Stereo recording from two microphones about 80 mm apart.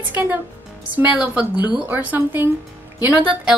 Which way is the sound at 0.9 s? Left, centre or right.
Centre.